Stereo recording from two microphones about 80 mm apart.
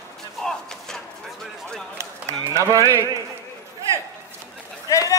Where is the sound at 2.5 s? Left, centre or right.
Right.